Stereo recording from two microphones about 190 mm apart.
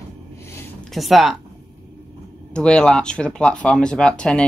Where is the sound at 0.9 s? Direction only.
Centre (ahead or behind).